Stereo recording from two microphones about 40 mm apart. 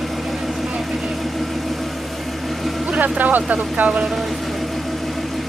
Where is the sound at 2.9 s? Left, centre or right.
Right.